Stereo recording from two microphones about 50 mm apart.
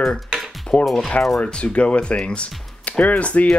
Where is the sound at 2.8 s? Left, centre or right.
Left.